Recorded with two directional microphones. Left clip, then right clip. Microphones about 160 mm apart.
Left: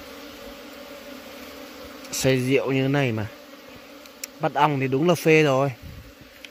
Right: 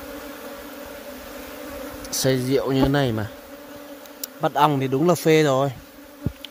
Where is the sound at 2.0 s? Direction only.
Centre (ahead or behind).